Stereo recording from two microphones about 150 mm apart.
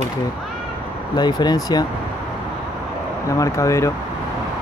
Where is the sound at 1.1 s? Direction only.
30° left (ahead or behind).